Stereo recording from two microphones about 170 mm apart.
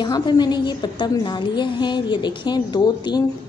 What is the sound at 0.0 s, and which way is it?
A woman's voice, 25° left (ahead or behind).